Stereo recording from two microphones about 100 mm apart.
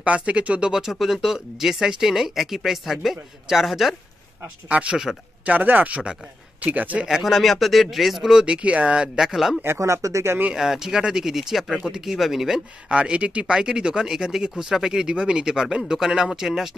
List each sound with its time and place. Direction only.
0.0 s speech: 10° right (ahead or behind)
4.6 s speech: 15° right (ahead or behind)
7.1 s speech: 5° right (ahead or behind)
9.6 s speech: 25° right (ahead or behind)
10.5 s speech: 5° right (ahead or behind)